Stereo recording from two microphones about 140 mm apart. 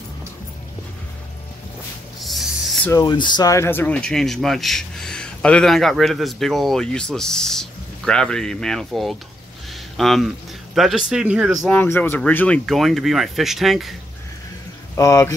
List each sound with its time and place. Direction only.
2.1 s rub: centre (ahead or behind)
2.9 s speech: 30° left (ahead or behind)
3.5 s speech: 15° left (ahead or behind); by 11.5 s 5° right (ahead or behind)
11.6 s speech: 10° left (ahead or behind)
15.0 s speech: 20° left (ahead or behind)